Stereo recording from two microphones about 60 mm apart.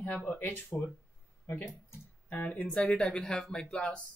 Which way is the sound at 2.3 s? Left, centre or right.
Left.